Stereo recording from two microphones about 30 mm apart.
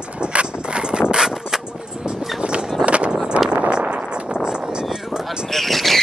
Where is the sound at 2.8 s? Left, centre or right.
Right.